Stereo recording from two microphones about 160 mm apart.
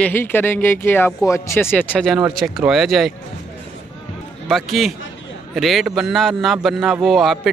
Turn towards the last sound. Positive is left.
turn(degrees=0)  # may be behind; listen again after turning